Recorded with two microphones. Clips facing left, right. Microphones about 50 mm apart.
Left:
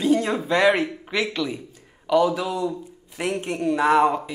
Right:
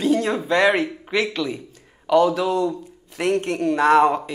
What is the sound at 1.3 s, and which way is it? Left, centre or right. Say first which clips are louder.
Speech: right 1 dB; centre.